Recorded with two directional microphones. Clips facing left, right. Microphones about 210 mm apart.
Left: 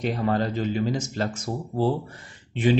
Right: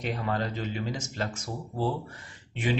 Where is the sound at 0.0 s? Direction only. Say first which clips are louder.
Left 6 dB; 35° left (ahead or behind).